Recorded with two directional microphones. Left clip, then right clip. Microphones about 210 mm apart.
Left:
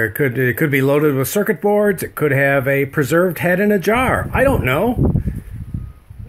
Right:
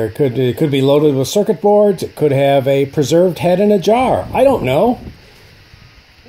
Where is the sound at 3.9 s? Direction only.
20° left (ahead or behind).